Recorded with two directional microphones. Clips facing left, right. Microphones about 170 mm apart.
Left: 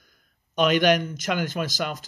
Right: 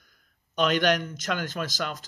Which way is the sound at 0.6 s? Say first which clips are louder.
Left 4 dB; 10° left (ahead or behind).